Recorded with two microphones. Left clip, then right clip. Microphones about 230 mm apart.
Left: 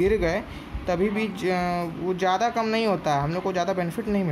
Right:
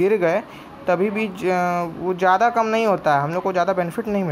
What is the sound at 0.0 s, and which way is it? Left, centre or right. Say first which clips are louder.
Speech: right 5 dB; centre.